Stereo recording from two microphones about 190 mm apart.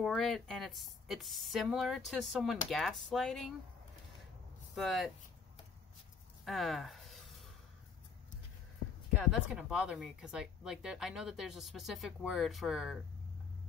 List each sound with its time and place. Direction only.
0.0 s speech: centre (ahead or behind)
4.7 s speech: centre (ahead or behind)
6.4 s a sound: centre (ahead or behind)
9.3 s speech: 5° right (ahead or behind)